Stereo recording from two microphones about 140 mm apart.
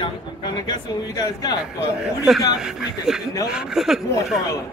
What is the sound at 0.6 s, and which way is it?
Speech, 30° left (ahead or behind).